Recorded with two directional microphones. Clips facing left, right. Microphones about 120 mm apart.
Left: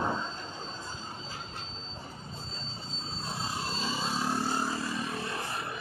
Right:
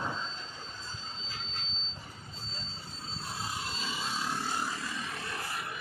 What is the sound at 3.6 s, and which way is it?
Vehicle, 30° left (ahead or behind).